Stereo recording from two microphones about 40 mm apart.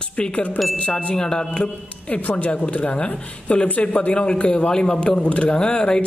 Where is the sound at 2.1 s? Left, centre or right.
Left.